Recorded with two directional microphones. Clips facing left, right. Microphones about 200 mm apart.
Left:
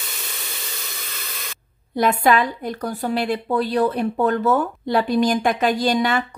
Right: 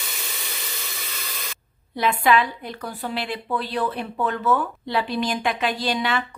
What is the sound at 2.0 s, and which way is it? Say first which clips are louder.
A woman's voice: left 3 dB; 45° left (ahead or behind).